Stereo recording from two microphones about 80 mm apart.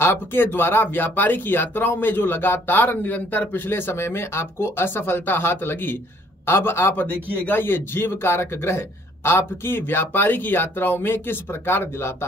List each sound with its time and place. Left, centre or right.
0.0 s a man's voice: left